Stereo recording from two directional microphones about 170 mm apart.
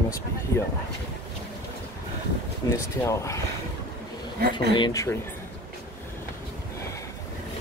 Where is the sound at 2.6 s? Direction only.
20° left (ahead or behind).